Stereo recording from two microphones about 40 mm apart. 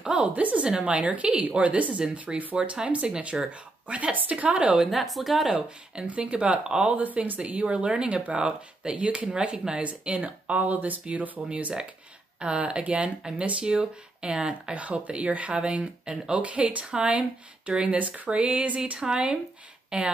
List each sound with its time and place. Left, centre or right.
0.0 s a sound: right
0.3 s speech: right
4.9 s speech: centre
6.0 s speech: right
7.0 s speech: right
11.4 s speech: right
17.8 s speech: right
18.9 s speech: right